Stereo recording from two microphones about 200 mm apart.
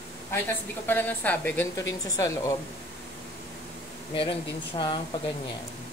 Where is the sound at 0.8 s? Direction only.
10° left (ahead or behind).